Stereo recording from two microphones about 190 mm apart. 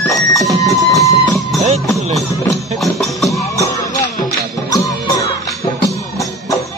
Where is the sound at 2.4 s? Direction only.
Centre (ahead or behind).